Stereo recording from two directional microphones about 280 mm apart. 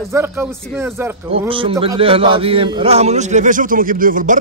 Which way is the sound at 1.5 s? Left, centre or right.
Centre.